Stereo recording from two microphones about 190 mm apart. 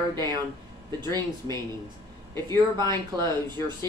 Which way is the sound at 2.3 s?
15° left (ahead or behind).